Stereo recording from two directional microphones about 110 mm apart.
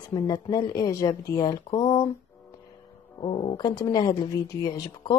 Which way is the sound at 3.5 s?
40° left (ahead or behind).